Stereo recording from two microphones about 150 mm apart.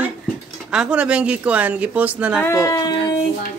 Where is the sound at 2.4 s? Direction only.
20° left (ahead or behind).